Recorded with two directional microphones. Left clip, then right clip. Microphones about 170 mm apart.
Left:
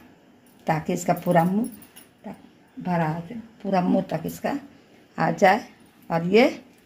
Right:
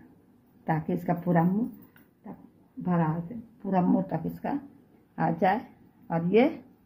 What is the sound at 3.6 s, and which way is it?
A woman's voice, 20° left (ahead or behind).